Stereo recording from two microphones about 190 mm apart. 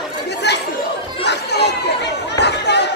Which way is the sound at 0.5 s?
65° left (ahead or behind).